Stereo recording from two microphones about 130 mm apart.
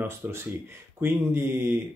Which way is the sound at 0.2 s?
15° right (ahead or behind).